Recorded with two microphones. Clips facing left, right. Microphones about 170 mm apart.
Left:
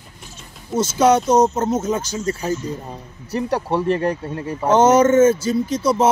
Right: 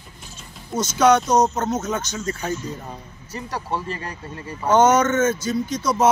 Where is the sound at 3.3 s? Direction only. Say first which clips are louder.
Left 11 dB; 65° left (ahead or behind).